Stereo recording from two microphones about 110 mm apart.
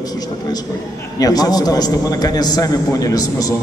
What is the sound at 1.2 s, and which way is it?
A man's voice, 35° left (ahead or behind).